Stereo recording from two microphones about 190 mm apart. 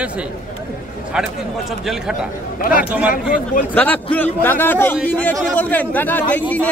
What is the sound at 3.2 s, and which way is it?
Speech, 45° left (ahead or behind).